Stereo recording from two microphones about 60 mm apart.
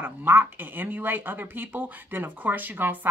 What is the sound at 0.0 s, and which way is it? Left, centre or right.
Speech, right.